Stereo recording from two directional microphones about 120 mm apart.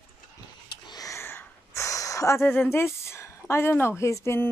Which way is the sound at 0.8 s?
30° left (ahead or behind).